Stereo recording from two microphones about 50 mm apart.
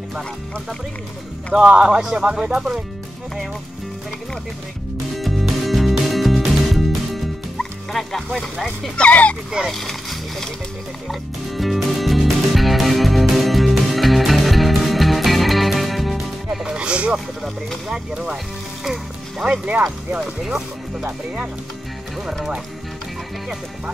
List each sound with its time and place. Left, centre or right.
1.5 s speech: centre
5.1 s music: centre
7.9 s speech: centre
9.1 s speech: left
9.7 s splash: centre
11.1 s music: centre
16.7 s speech: right
18.9 s music: centre
19.5 s speech: right